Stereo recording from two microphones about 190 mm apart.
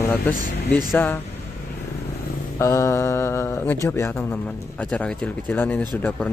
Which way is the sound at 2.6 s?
15° left (ahead or behind).